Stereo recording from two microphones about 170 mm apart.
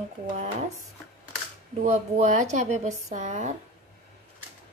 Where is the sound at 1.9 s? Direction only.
45° right (ahead or behind).